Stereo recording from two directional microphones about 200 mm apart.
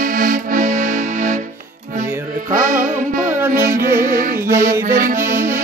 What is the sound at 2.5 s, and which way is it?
Music, 45° right (ahead or behind).